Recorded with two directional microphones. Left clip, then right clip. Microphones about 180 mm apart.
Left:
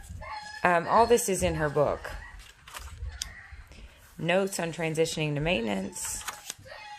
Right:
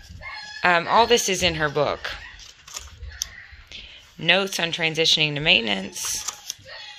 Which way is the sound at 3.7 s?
Centre (ahead or behind).